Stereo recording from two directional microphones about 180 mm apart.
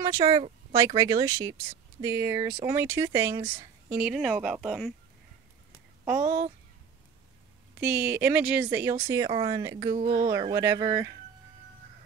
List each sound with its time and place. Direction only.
0.0 s speech: 20° right (ahead or behind); by 4.9 s centre (ahead or behind)
6.0 s speech: 10° right (ahead or behind)
7.8 s speech: 10° right (ahead or behind)